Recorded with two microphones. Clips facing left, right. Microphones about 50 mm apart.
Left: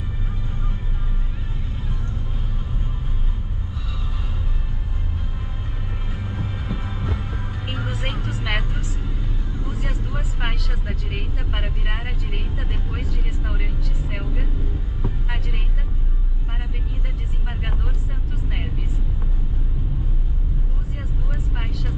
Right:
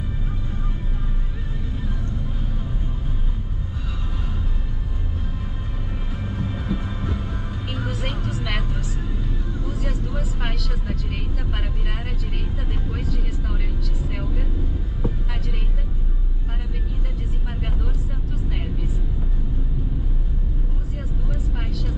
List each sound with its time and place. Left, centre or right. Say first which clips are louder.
6.2 s train: right 3 dB; centre
7.7 s music: even; left
9.6 s vehicle: right 1 dB; left